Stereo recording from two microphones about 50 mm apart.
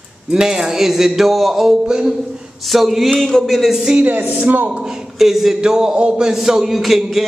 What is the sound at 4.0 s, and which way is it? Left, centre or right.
Speech, right.